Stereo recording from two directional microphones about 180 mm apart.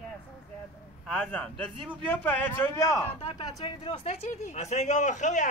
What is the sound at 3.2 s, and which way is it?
Speech, 30° left (ahead or behind).